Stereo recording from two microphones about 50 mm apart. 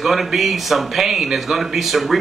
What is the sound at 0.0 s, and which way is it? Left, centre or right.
Speech, centre.